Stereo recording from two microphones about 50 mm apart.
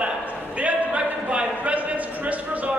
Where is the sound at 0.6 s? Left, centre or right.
Right.